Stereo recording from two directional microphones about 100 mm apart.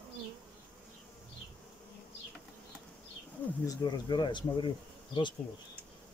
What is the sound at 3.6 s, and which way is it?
Speech, 45° left (ahead or behind).